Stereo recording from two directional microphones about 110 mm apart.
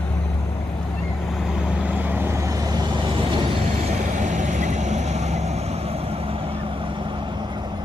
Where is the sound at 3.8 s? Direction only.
90° right; by 7.7 s 45° right (ahead or behind).